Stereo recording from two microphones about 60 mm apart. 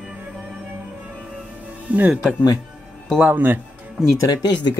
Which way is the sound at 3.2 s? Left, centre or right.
Right.